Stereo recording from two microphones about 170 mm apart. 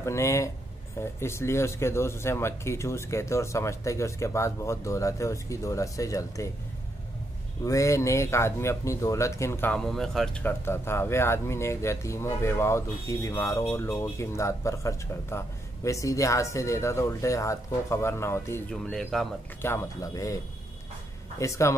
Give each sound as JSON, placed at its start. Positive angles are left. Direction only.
{"t": 0.0, "sound": "speech", "side_deg": 15}
{"t": 7.6, "sound": "speech", "side_deg": 20}
{"t": 9.8, "sound": "speech", "side_deg": 0}
{"t": 18.9, "sound": "speech", "side_deg": 5}
{"t": 19.6, "sound": "speech", "side_deg": 15}
{"t": 21.4, "sound": "speech", "side_deg": 15}